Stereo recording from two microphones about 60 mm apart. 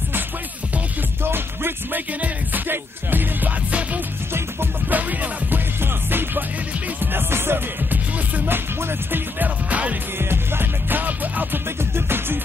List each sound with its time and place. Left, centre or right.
1.2 s music: right
4.3 s music: right
9.7 s music: right
10.1 s music: right
11.8 s music: right